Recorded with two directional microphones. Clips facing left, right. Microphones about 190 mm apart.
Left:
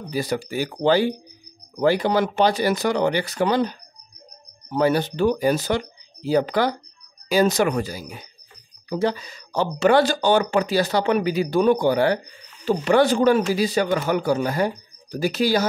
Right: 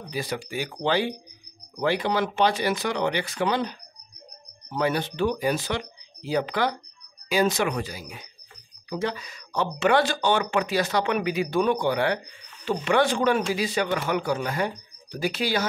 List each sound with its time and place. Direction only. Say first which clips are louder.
0.1 s speech: left 6 dB; 40° left (ahead or behind)
4.7 s speech: left 5 dB; 40° left (ahead or behind)